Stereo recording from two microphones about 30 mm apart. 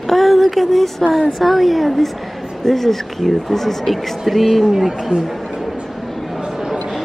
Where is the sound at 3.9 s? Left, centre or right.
Centre.